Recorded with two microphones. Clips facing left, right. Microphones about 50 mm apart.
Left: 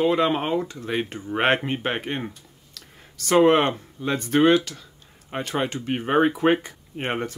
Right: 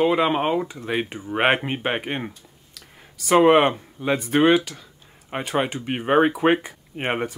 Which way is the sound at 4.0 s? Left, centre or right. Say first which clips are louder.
Even; centre.